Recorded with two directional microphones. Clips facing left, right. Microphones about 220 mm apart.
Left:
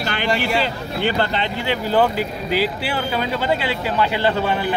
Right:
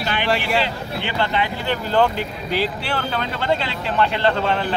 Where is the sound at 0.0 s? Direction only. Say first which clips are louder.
Even; 40° left (ahead or behind).